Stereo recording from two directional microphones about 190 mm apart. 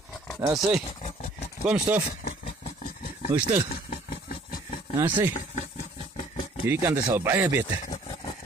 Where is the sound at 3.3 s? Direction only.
15° right (ahead or behind).